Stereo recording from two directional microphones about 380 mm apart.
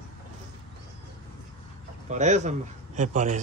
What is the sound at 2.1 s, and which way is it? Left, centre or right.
Speech, centre.